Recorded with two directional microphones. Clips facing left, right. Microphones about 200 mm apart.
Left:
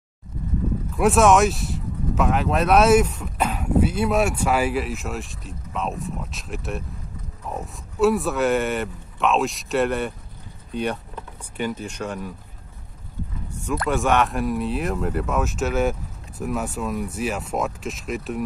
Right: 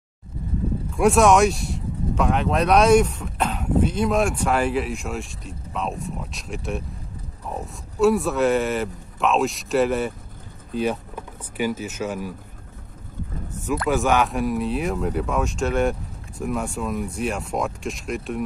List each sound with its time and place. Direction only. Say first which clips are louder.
0.9 s speech: even; centre (ahead or behind)
13.8 s speech: even; centre (ahead or behind)